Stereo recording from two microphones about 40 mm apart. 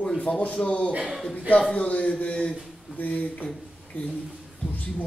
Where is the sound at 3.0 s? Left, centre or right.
Left.